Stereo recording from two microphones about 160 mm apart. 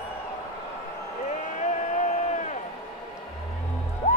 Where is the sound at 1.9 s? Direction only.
50° left (ahead or behind).